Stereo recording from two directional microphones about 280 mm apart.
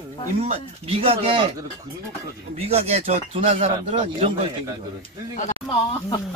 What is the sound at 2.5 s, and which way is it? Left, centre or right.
Speech, right.